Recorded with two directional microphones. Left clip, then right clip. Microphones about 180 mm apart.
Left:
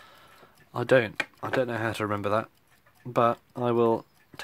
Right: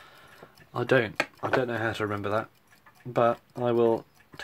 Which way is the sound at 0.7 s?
35° left (ahead or behind).